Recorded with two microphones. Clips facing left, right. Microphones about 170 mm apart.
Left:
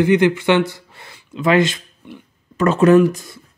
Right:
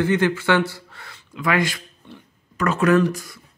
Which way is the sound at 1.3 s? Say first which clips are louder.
Left 6 dB; 25° left (ahead or behind).